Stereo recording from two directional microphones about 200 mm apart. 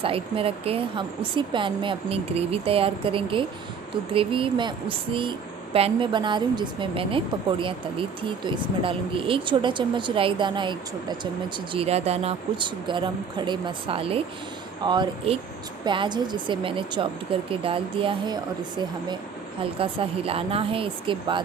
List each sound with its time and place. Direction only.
0.0 s speech: 30° right (ahead or behind)